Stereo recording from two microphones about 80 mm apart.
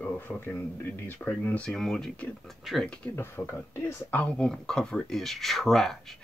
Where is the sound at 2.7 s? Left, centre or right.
Centre.